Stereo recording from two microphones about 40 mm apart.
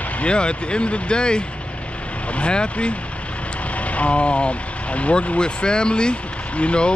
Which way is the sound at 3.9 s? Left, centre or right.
Left.